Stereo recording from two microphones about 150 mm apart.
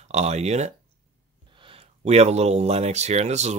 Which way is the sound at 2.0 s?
45° right (ahead or behind).